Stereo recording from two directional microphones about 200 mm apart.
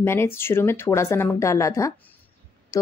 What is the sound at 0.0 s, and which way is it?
A woman's voice, 10° left (ahead or behind).